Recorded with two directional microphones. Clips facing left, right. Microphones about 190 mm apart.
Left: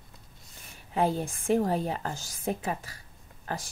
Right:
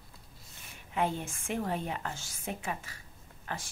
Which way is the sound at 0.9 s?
35° left (ahead or behind).